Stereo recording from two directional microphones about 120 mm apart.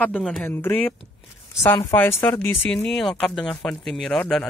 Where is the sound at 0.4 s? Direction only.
15° left (ahead or behind).